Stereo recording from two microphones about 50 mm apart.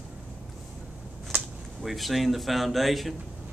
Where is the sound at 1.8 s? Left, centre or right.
Centre.